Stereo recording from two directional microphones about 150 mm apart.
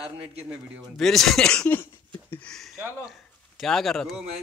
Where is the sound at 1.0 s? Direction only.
Centre (ahead or behind).